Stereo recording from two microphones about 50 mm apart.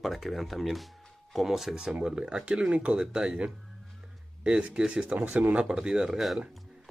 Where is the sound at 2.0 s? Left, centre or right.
Centre.